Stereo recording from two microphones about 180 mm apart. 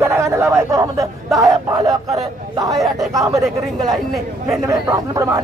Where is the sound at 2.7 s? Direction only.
Centre (ahead or behind).